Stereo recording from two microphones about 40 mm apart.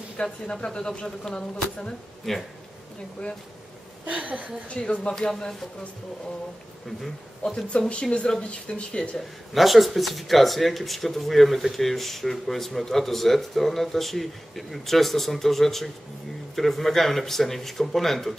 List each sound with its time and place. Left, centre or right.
0.2 s speech: left
2.3 s speech: centre
4.0 s a woman's voice: right
4.6 s speech: left
7.4 s speech: left
9.5 s speech: centre